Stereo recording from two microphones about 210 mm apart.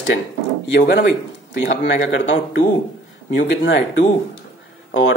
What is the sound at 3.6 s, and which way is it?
Speech, 55° left (ahead or behind).